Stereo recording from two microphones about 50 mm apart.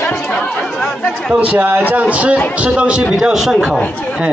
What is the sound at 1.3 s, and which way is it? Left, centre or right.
A man's voice, right.